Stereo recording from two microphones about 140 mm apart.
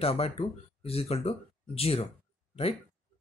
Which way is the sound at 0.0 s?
45° left (ahead or behind).